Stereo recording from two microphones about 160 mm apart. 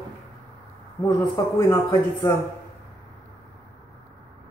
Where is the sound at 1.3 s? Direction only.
20° left (ahead or behind).